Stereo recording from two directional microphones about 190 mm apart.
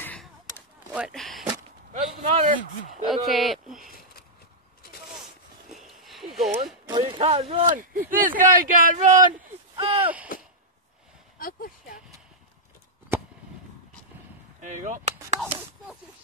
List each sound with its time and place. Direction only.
0.0 s a sound: 10° left (ahead or behind)
0.9 s speech: centre (ahead or behind)
1.9 s a man's voice: 40° right (ahead or behind)
3.1 s speech: centre (ahead or behind)
5.2 s a sound: centre (ahead or behind)
6.5 s speech: 25° right (ahead or behind)
7.7 s speech: 45° right (ahead or behind)
9.8 s artillery fire: 25° right (ahead or behind)
11.3 s a sound: 50° left (ahead or behind)
14.6 s chop: 40° right (ahead or behind)